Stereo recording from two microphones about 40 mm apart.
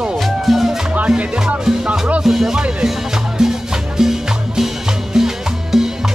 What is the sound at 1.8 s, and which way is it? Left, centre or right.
Speech, right.